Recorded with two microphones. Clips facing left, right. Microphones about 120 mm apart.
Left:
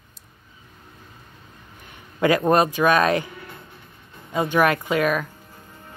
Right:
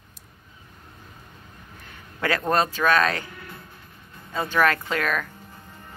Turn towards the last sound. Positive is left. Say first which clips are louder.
# left 5 dB
turn(degrees=10)  # may be behind; listen again after turning